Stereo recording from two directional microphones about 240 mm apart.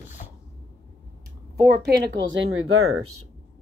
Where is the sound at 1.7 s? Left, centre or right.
Right.